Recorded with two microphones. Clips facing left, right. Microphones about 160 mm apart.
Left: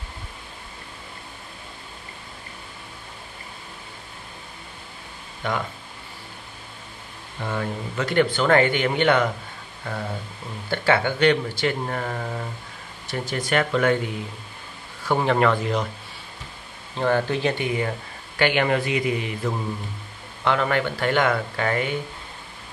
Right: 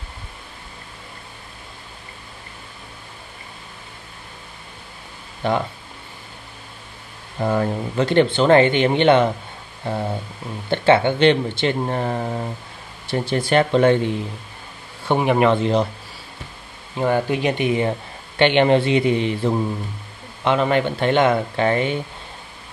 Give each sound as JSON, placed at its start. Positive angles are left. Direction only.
{"t": 5.4, "sound": "speech", "side_deg": -30}
{"t": 7.3, "sound": "speech", "side_deg": -40}
{"t": 10.7, "sound": "speech", "side_deg": -25}
{"t": 15.0, "sound": "speech", "side_deg": -15}
{"t": 16.9, "sound": "speech", "side_deg": -10}